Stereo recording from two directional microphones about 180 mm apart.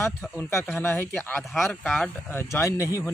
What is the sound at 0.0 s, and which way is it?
Speech, 15° left (ahead or behind).